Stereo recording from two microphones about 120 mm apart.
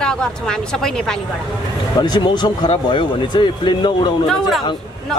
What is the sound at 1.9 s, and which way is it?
Speech, 35° left (ahead or behind).